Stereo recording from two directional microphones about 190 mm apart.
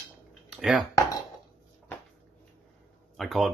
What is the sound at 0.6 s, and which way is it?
Speech, 5° right (ahead or behind).